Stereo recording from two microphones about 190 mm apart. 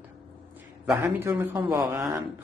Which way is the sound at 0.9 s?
10° right (ahead or behind).